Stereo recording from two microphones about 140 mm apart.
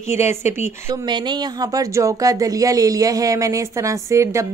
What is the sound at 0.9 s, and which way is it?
A woman's voice, 30° right (ahead or behind).